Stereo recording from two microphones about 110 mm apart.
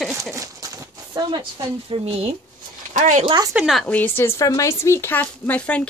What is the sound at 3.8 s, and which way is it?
A woman's voice, 15° left (ahead or behind).